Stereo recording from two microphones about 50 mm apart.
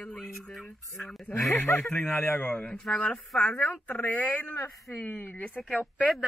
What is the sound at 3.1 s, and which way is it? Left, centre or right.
Speech, left.